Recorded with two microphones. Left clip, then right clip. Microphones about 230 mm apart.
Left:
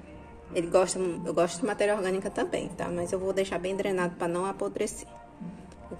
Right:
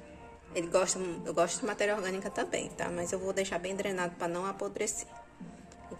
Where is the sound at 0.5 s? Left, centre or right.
Centre.